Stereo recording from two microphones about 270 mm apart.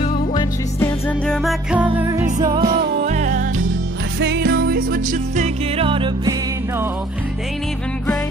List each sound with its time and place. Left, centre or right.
0.0 s music: centre
2.6 s music: right
4.2 s music: right; by 6.3 s centre